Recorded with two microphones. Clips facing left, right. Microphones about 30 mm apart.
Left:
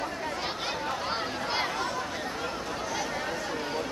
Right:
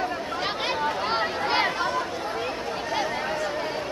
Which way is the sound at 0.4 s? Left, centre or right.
Right.